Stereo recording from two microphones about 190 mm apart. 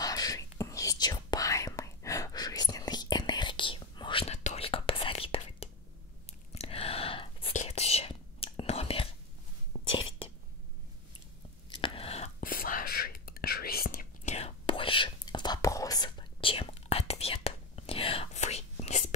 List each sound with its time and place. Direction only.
0.0 s whispering: 20° left (ahead or behind)
9.8 s a sound: 25° left (ahead or behind)
11.7 s whispering: 25° left (ahead or behind)
12.4 s whispering: 45° left (ahead or behind)
14.3 s whispering: 30° left (ahead or behind)